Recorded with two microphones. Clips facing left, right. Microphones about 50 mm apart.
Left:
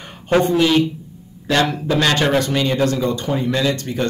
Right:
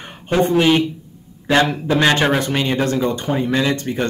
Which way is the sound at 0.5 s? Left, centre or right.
Right.